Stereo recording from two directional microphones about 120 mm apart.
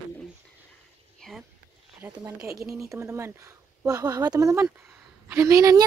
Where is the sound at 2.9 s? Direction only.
25° right (ahead or behind).